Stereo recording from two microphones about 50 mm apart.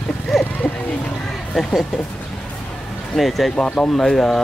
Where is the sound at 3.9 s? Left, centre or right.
Centre.